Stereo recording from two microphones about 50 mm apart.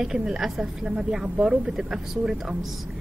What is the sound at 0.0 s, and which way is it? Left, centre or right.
A woman's voice, centre.